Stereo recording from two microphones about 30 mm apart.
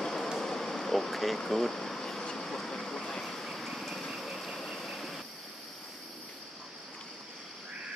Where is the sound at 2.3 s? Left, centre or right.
Centre.